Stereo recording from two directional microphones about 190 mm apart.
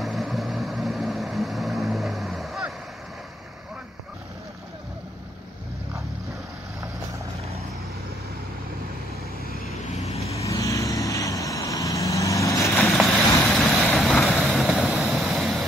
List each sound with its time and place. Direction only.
0.0 s vehicle: centre (ahead or behind)
9.8 s vehicle: 35° left (ahead or behind)
10.3 s vehicle: 15° left (ahead or behind)
12.8 s vehicle: centre (ahead or behind)